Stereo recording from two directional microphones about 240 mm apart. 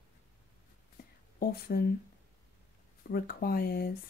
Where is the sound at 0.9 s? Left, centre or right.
Left.